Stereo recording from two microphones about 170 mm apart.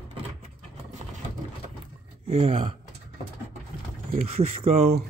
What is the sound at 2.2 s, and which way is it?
Speech, 35° right (ahead or behind).